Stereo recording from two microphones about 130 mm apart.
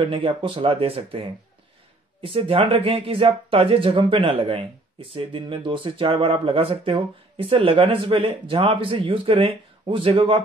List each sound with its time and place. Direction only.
0.0 s speech: 40° right (ahead or behind)